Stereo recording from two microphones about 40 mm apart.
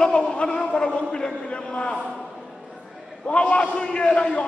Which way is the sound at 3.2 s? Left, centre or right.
Left.